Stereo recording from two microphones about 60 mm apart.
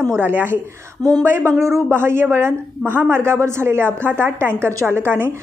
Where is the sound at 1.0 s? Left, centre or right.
Right.